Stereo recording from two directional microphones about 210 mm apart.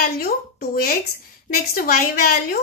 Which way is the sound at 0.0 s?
45° left (ahead or behind).